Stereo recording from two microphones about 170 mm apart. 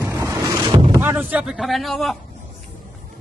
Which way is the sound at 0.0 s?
15° right (ahead or behind).